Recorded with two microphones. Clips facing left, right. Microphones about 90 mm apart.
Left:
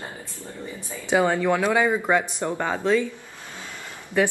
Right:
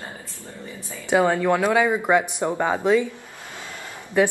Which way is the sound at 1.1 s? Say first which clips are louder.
Right 2 dB; 10° right (ahead or behind).